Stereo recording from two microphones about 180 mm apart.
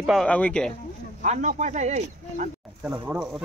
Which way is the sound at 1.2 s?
40° right (ahead or behind).